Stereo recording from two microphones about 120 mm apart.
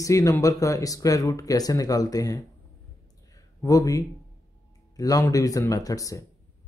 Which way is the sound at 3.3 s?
30° left (ahead or behind).